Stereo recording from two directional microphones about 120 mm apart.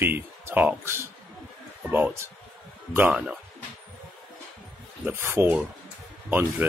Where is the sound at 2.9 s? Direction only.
15° right (ahead or behind).